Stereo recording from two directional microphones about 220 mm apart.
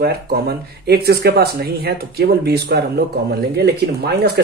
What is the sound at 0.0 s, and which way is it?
Speech, 45° right (ahead or behind).